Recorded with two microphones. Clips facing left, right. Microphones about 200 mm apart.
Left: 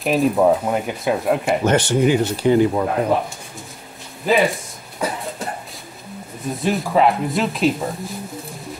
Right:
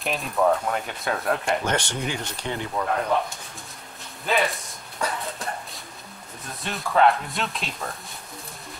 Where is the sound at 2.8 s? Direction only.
25° left (ahead or behind).